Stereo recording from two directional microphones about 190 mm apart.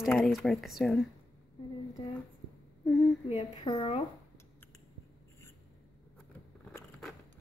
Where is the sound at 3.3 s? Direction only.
25° left (ahead or behind).